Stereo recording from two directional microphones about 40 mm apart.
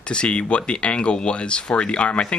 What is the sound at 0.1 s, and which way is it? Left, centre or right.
Speech, left.